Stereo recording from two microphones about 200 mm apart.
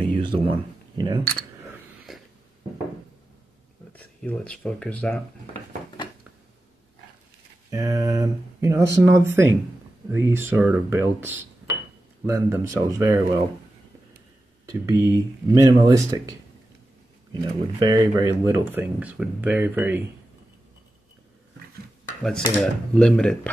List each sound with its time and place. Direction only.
0.0 s speech: 25° right (ahead or behind)
2.1 s a sound: centre (ahead or behind)
3.9 s speech: 5° left (ahead or behind)
7.7 s speech: 15° right (ahead or behind)
14.7 s speech: 15° right (ahead or behind)
22.6 s speech: 5° left (ahead or behind)